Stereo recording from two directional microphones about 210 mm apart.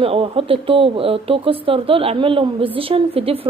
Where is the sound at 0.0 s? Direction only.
25° right (ahead or behind).